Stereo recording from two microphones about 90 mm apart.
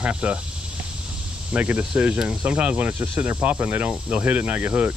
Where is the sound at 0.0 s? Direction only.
15° right (ahead or behind).